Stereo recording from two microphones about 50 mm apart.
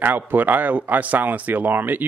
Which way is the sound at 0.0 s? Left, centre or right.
Right.